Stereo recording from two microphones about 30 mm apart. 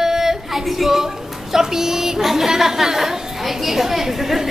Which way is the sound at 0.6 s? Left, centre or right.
Centre.